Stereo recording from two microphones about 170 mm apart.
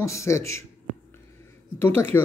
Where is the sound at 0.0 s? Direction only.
15° left (ahead or behind).